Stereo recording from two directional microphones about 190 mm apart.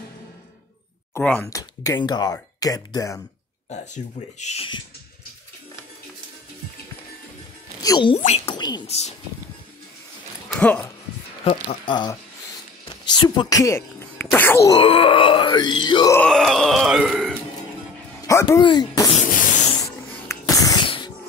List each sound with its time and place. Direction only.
1.1 s speech: 10° left (ahead or behind)
3.7 s speech: 40° left (ahead or behind)
7.8 s speech: 20° left (ahead or behind)
8.2 s speech: 35° left (ahead or behind)
8.5 s groan: 20° left (ahead or behind)
10.5 s speech: 5° left (ahead or behind)
11.8 s groan: 25° left (ahead or behind)
13.1 s speech: 25° left (ahead or behind)
14.8 s groan: 30° left (ahead or behind)
16.2 s burping: 5° left (ahead or behind)
18.2 s speech: 15° left (ahead or behind)
19.1 s spray: 45° left (ahead or behind)
20.2 s music: 20° left (ahead or behind)